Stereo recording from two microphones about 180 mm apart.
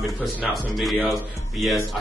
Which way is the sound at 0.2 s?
Centre (ahead or behind).